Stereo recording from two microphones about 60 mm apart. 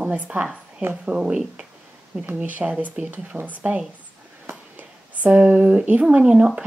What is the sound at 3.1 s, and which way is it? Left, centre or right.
Speech, right.